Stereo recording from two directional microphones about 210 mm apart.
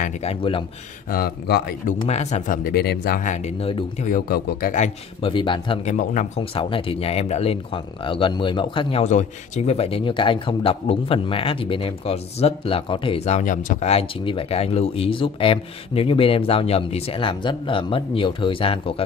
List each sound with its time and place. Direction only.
0.0 s speech: 30° left (ahead or behind)
1.1 s a man's voice: 45° left (ahead or behind)
2.0 s speech: 35° left (ahead or behind)
4.1 s speech: 45° left (ahead or behind); by 19.0 s 25° left (ahead or behind)